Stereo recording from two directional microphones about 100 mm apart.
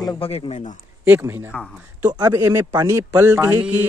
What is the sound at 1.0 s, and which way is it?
Speech, 20° right (ahead or behind).